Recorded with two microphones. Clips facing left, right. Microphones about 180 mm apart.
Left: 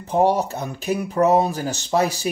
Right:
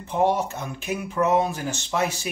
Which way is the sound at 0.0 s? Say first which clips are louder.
Left 4 dB; 40° left (ahead or behind).